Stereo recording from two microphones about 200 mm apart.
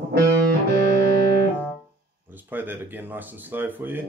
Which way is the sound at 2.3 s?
10° right (ahead or behind).